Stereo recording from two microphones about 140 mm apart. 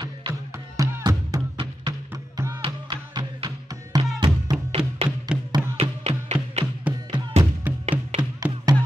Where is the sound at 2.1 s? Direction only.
25° right (ahead or behind).